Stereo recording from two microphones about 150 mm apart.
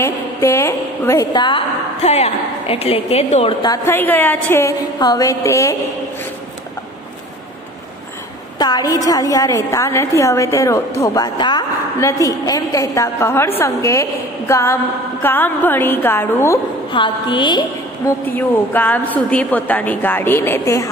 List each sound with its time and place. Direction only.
0.0 s a woman's voice: 20° left (ahead or behind)
2.0 s a woman's voice: 45° left (ahead or behind)
3.6 s a woman's voice: 20° left (ahead or behind)
8.5 s a woman's voice: 25° left (ahead or behind)
16.9 s a woman's voice: 30° left (ahead or behind)
18.2 s a woman's voice: 10° left (ahead or behind)